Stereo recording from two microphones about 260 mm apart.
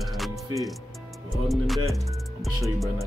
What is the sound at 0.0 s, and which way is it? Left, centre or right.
Music, centre.